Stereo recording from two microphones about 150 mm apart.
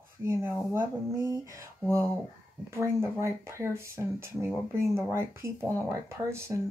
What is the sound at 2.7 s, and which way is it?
Speech, 15° right (ahead or behind).